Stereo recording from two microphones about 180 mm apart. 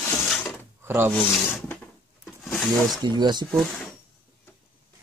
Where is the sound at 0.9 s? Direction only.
15° right (ahead or behind).